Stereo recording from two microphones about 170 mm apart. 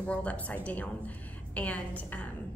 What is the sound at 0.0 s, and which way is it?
A woman's voice, 10° left (ahead or behind).